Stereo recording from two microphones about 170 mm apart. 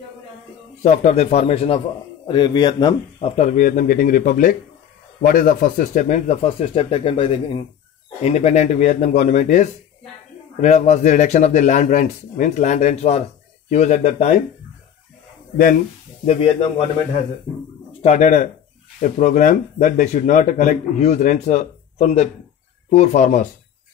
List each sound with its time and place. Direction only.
0.8 s speech: 40° left (ahead or behind); by 3.3 s 25° left (ahead or behind)
3.3 s speech: 50° left (ahead or behind)
15.5 s speech: 55° left (ahead or behind)
16.3 s speech: 35° left (ahead or behind)
18.0 s speech: 45° left (ahead or behind)